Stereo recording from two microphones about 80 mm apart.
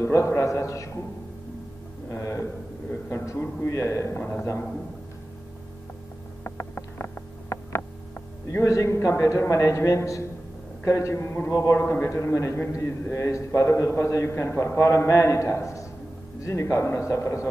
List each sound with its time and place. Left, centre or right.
0.0 s a man's voice: left
2.0 s a man's voice: left
4.2 s a man's voice: centre
6.4 s a sound: left
8.5 s a man's voice: left